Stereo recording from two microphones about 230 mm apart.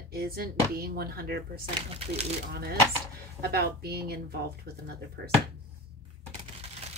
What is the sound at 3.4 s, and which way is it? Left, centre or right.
A woman's voice, right.